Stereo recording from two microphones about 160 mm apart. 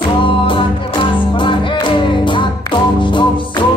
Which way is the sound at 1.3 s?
30° left (ahead or behind).